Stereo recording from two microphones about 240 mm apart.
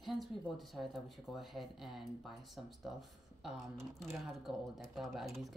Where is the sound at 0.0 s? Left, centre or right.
Centre.